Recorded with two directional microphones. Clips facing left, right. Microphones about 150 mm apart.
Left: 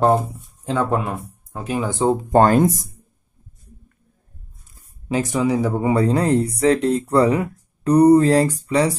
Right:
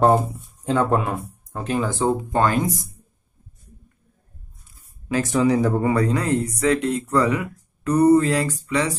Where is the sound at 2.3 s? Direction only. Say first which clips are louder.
Left 6 dB; 45° left (ahead or behind).